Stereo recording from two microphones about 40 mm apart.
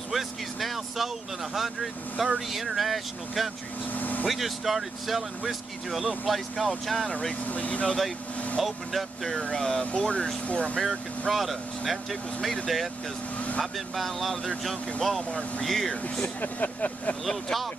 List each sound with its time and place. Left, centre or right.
0.1 s speech: centre
3.9 s vehicle: left
4.3 s speech: centre
7.1 s speech: centre
7.4 s speech: left
8.5 s speech: centre; by 10.8 s left
10.8 s speech: centre
15.0 s speech: centre
16.3 s speech: left
17.2 s speech: centre